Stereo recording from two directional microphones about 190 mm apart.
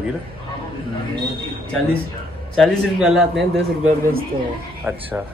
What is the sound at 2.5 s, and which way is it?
Speech, centre (ahead or behind).